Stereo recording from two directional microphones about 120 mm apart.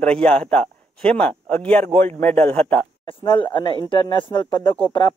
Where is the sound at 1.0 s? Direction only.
10° left (ahead or behind).